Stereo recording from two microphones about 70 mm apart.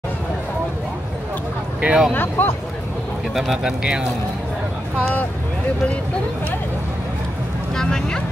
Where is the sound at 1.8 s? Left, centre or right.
Centre.